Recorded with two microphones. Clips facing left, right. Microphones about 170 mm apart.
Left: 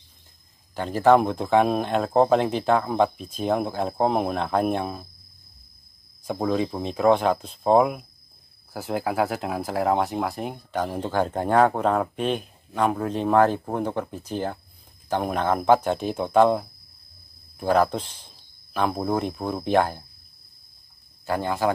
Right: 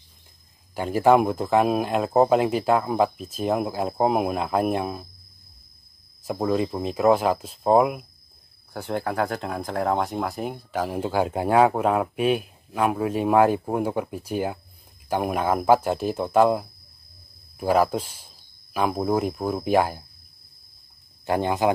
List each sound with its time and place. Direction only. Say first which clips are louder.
0.7 s speech: even; 10° right (ahead or behind)
6.2 s speech: right 1 dB; 5° right (ahead or behind)
21.3 s speech: right 2 dB; 20° right (ahead or behind)